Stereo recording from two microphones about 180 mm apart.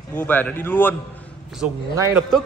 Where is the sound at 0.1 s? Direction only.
10° left (ahead or behind).